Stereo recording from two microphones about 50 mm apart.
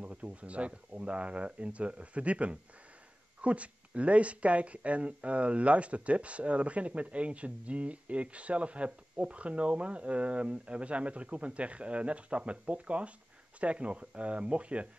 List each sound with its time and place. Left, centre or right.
0.0 s speech: right